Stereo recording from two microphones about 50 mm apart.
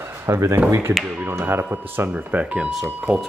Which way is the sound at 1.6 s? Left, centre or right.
Right.